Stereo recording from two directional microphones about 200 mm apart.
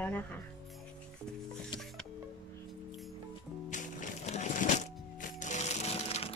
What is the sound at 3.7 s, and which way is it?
Music, 35° left (ahead or behind).